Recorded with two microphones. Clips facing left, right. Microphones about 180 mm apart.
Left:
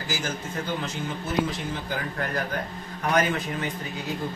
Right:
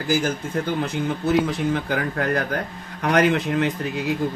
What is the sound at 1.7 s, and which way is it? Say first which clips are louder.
Speech: right 8 dB; 70° right (ahead or behind).